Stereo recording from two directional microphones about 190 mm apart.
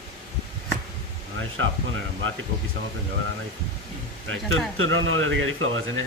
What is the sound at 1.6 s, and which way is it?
Speech, 90° right.